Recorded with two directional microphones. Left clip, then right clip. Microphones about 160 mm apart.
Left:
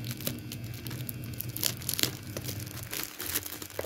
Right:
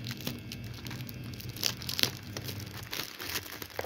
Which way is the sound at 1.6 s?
Centre (ahead or behind).